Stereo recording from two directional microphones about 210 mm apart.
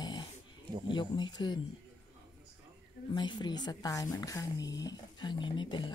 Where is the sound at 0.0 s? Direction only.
20° left (ahead or behind).